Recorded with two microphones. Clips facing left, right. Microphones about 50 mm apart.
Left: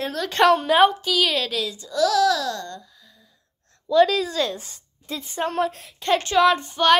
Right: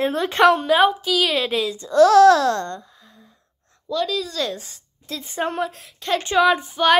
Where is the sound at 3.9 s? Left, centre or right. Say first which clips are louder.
Left 8 dB; centre.